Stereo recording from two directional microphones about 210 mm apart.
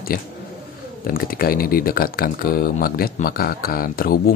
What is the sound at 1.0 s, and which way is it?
Speech, 45° left (ahead or behind).